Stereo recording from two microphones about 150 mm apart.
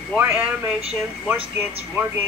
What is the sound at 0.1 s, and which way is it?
Speech, 10° right (ahead or behind).